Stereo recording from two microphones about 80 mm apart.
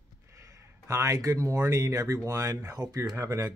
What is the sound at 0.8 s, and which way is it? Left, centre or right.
Speech, right.